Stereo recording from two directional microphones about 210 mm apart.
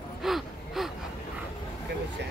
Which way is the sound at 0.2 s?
Centre (ahead or behind).